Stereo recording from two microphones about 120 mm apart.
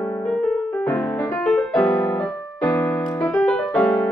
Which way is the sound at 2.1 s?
5° left (ahead or behind).